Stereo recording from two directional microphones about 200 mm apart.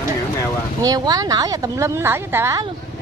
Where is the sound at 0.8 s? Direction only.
20° right (ahead or behind).